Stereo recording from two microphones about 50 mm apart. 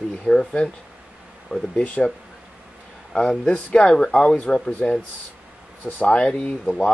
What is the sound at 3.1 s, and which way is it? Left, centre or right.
Speech, left.